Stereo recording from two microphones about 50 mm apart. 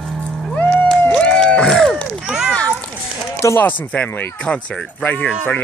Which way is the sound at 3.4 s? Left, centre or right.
Left.